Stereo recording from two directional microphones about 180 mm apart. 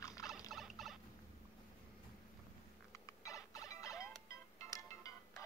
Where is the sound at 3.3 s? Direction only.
20° left (ahead or behind).